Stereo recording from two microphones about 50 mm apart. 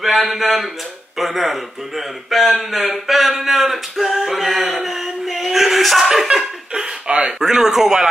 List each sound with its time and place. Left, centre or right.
0.0 s speech: centre
6.7 s a sound: right
7.3 s a man's voice: centre